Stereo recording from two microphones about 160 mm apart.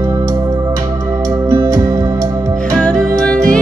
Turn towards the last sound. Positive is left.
turn(degrees=5)  # may be behind; listen again after turning